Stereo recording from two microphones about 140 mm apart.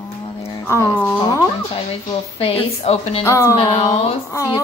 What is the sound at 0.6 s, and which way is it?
Speech, 20° left (ahead or behind).